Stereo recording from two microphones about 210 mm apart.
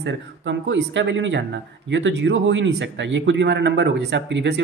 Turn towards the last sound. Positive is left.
turn(degrees=-55)  # may be behind; listen again after turning